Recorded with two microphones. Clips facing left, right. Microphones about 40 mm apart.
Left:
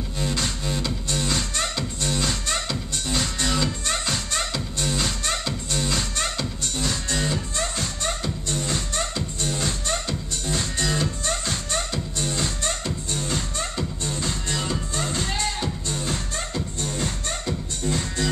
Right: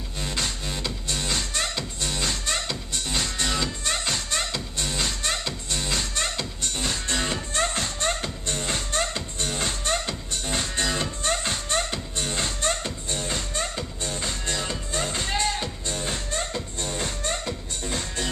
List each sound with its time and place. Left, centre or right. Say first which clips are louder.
0.2 s music: left 2 dB; centre
7.1 s music: left 1 dB; right; by 13.8 s centre
15.1 s music: right 2 dB; centre
16.9 s music: right 2 dB; right